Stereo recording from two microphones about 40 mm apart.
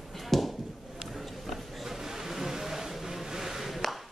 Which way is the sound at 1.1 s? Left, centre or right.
Centre.